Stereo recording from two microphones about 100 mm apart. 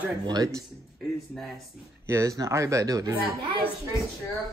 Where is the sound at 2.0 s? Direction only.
30° right (ahead or behind).